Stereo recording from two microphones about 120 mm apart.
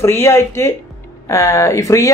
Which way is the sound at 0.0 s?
20° left (ahead or behind).